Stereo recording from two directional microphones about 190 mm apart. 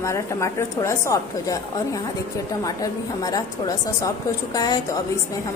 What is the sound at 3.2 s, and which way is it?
A woman's voice, 20° left (ahead or behind).